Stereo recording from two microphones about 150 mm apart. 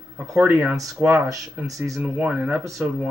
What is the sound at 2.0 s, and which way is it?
Speech, 5° right (ahead or behind).